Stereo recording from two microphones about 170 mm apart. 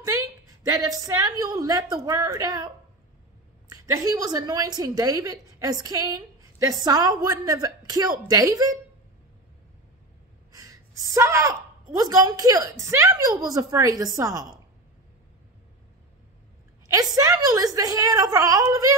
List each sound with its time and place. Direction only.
0.0 s a woman's voice: 20° right (ahead or behind)
10.5 s a woman's voice: 20° right (ahead or behind)
16.8 s a woman's voice: 20° right (ahead or behind)